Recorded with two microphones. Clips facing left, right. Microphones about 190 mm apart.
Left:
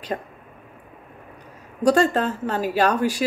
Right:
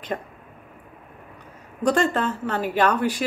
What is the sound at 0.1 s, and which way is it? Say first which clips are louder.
Speech: left 1 dB; 35° left (ahead or behind).